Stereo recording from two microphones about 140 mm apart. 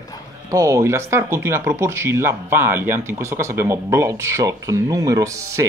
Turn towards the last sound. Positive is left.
turn(degrees=-20)  # may be behind; listen again after turning